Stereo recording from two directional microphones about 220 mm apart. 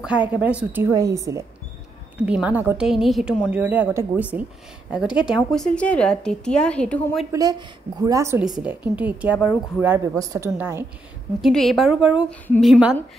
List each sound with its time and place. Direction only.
0.0 s a woman's voice: 5° right (ahead or behind)
7.3 s a woman's voice: 15° right (ahead or behind)
11.4 s a woman's voice: centre (ahead or behind)